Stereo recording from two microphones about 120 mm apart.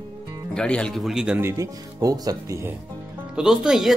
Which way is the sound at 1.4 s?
25° right (ahead or behind).